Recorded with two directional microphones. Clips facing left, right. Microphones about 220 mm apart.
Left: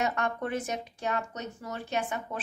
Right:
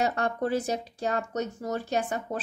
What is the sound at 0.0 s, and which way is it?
A woman's voice, 35° right (ahead or behind).